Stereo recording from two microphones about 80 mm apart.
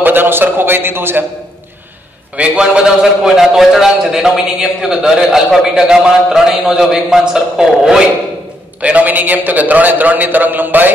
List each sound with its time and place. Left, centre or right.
0.0 s a man's voice: right
2.3 s a man's voice: centre
8.8 s a man's voice: centre